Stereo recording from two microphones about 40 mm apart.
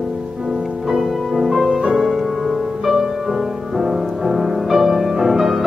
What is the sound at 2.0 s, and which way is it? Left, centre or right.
Music, centre.